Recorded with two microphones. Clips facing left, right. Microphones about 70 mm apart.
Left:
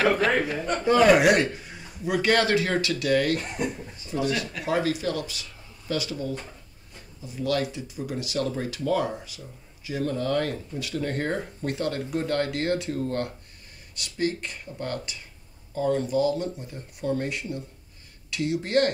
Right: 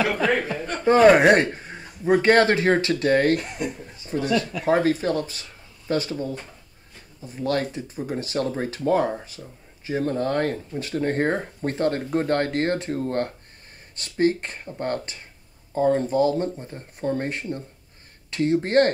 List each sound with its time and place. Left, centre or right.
0.8 s speech: right